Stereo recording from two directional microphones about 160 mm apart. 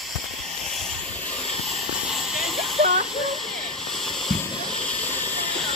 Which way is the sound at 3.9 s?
Centre (ahead or behind).